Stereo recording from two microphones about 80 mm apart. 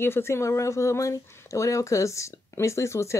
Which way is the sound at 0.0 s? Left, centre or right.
Left.